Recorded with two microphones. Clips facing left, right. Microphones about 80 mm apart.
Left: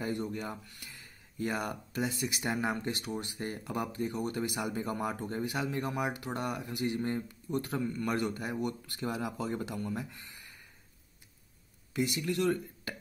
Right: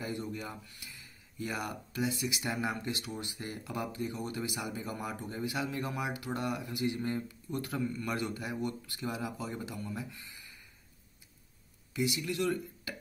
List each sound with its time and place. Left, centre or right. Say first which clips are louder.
0.0 s speech: left 3 dB; left
11.9 s speech: left 1 dB; left